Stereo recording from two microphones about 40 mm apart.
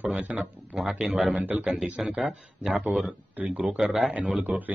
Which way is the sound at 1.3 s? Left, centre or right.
Right.